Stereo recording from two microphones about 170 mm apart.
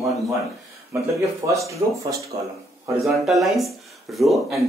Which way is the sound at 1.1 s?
20° right (ahead or behind).